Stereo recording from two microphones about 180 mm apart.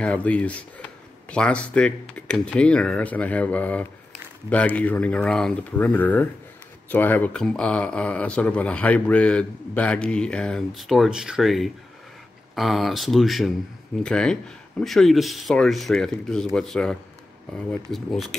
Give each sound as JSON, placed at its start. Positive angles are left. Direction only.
{"t": 0.0, "sound": "speech", "side_deg": 5}